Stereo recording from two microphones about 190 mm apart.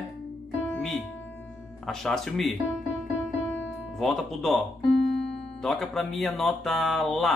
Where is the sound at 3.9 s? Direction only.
Centre (ahead or behind).